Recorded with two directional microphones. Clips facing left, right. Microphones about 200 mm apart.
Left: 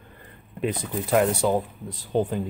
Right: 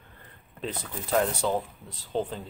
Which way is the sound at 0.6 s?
15° left (ahead or behind).